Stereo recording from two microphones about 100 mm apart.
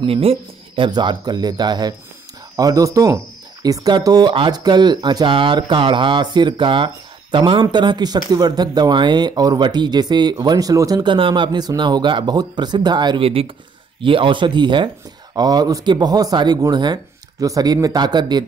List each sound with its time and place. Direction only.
0.0 s speech: 70° right (ahead or behind)
0.9 s speech: 45° right (ahead or behind)
11.1 s speech: 55° right (ahead or behind)
13.2 s speech: 70° right (ahead or behind); by 18.4 s 45° right (ahead or behind)